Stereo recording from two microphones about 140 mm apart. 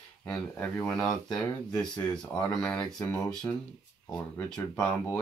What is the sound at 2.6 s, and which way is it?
Speech, 5° left (ahead or behind).